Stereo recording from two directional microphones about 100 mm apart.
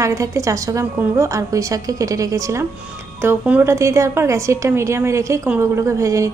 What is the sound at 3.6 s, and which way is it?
A woman's voice, 30° right (ahead or behind).